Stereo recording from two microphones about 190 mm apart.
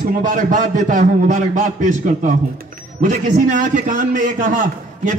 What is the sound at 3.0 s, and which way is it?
A man's voice, 45° right (ahead or behind).